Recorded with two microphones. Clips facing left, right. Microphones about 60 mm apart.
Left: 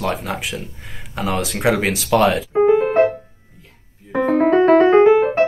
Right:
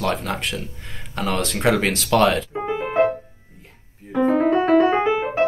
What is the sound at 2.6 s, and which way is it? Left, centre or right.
Music, left.